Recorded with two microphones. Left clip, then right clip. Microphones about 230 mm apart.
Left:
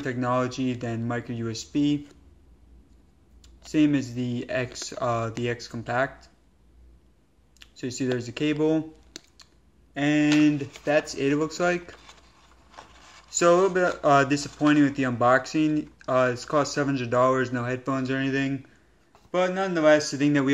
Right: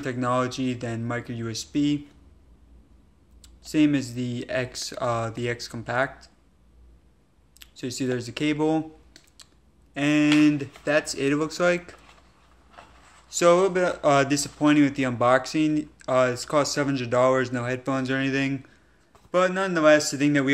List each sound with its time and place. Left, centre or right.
0.0 s speech: centre
3.4 s speech: centre
7.5 s speech: centre
9.9 s speech: centre
13.3 s speech: centre